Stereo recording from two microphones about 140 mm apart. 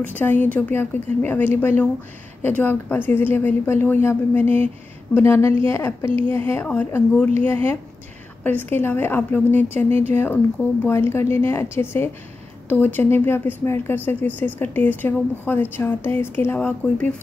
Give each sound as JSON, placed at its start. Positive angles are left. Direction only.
{"t": 0.0, "sound": "speech", "side_deg": 15}